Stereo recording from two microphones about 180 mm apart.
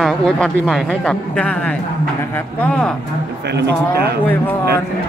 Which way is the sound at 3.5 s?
70° right (ahead or behind).